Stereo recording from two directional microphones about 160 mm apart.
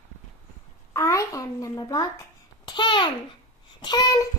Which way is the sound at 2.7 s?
30° left (ahead or behind).